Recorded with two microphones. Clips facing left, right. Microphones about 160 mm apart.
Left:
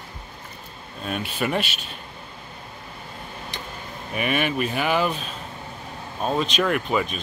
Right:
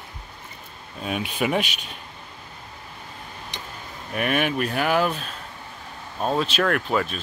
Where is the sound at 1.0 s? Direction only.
5° right (ahead or behind).